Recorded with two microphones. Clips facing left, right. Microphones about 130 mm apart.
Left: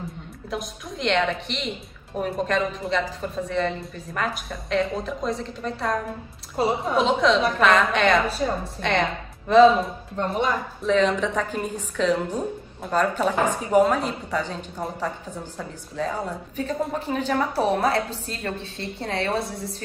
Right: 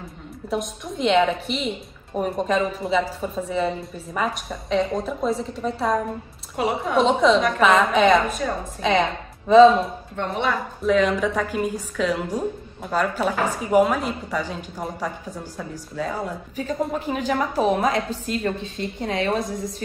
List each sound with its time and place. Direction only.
0.5 s a woman's voice: centre (ahead or behind)
6.6 s a woman's voice: 35° left (ahead or behind)
7.0 s a woman's voice: centre (ahead or behind)
10.1 s a woman's voice: 40° left (ahead or behind)
10.8 s a woman's voice: 5° right (ahead or behind)